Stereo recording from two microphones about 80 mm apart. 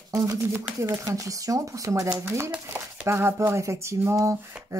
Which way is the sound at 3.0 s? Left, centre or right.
Right.